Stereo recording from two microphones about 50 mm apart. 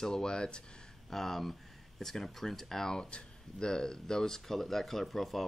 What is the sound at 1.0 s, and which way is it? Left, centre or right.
Speech, centre.